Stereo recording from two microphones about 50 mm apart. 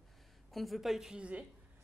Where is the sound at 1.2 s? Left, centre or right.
Right.